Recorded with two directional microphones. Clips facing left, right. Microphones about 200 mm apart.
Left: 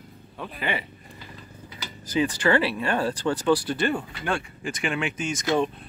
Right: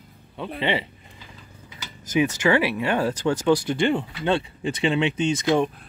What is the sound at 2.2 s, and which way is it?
Speech, 10° right (ahead or behind).